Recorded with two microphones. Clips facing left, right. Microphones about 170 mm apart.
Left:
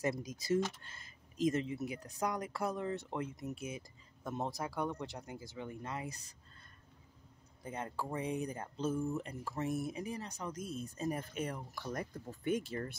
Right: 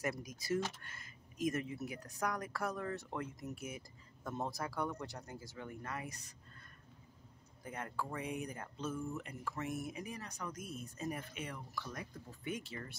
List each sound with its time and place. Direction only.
0.0 s speech: 25° left (ahead or behind)
7.6 s speech: 25° left (ahead or behind); by 12.9 s 45° left (ahead or behind)